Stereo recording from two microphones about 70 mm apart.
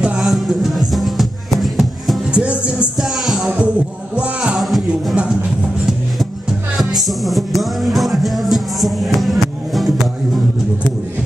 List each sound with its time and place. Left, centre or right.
0.2 s music: centre
2.3 s music: centre
3.0 s music: centre
3.4 s music: centre
4.6 s music: centre
6.8 s music: centre